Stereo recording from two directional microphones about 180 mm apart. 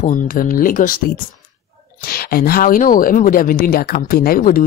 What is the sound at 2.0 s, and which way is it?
Speech, 55° left (ahead or behind).